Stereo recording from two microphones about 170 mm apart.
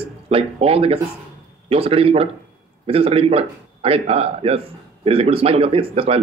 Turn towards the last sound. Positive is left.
turn(degrees=-35)  # may be behind; listen again after turning